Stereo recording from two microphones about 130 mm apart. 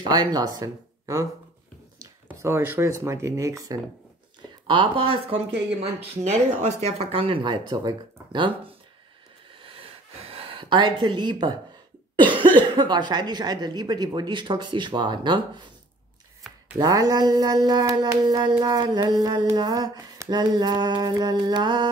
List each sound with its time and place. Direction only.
0.0 s speech: 35° right (ahead or behind)
2.2 s dog: 15° right (ahead or behind)
4.6 s speech: 40° right (ahead or behind)
6.2 s speech: 55° right (ahead or behind); by 8.7 s 35° right (ahead or behind)
9.6 s gasp: 45° right (ahead or behind)
12.2 s speech: 40° right (ahead or behind)
16.7 s dog: 30° right (ahead or behind)
18.6 s speech: 30° right (ahead or behind)